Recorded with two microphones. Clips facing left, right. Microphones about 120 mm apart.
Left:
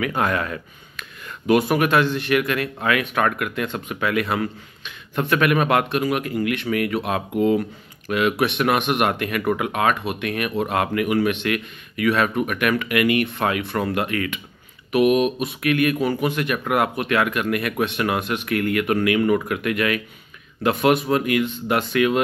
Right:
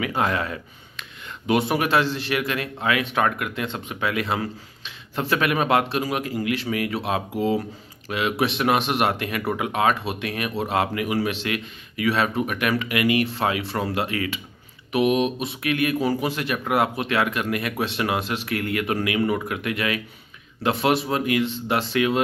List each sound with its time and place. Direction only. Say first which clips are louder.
0.0 s speech: left 1 dB; 25° right (ahead or behind)
8.4 s speech: left 1 dB; 30° right (ahead or behind)